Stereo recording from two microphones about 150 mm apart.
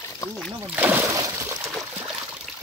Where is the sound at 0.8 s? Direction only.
15° right (ahead or behind).